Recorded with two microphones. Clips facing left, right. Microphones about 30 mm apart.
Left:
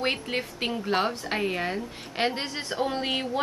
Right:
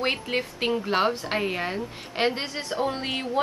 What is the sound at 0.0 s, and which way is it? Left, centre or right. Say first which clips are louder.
A woman's voice: right 2 dB; centre.